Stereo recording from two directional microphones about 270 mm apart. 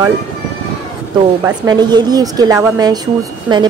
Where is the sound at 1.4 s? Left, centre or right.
Centre.